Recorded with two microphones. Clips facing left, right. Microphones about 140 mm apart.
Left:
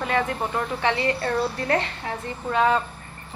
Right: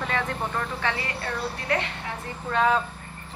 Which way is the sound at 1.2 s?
35° left (ahead or behind).